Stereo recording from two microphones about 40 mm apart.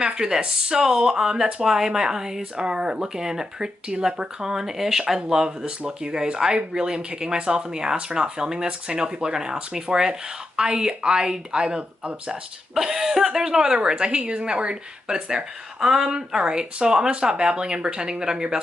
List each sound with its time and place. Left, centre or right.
0.0 s speech: centre
12.7 s speech: centre